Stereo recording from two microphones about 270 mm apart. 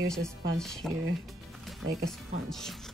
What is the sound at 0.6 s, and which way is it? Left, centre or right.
Speech, centre.